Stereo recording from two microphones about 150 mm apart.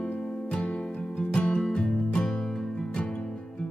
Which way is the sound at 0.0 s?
5° left (ahead or behind).